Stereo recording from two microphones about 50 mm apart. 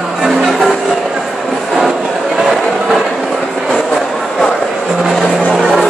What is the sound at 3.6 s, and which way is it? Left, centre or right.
Vehicle, centre.